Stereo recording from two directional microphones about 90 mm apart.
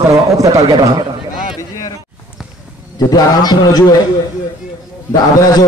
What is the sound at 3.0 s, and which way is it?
Speech, 50° left (ahead or behind).